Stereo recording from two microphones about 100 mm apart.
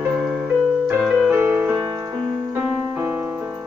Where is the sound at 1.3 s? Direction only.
25° right (ahead or behind).